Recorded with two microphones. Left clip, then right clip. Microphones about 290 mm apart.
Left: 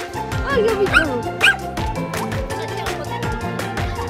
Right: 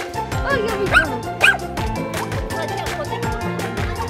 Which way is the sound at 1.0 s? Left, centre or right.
Right.